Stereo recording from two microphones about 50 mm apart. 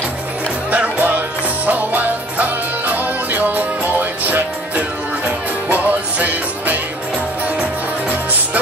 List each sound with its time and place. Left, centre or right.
0.7 s music: right